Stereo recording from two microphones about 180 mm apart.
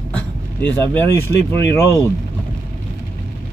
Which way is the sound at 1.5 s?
15° left (ahead or behind).